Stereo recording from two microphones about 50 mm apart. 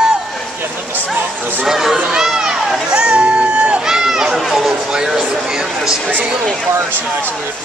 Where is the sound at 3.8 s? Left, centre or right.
Centre.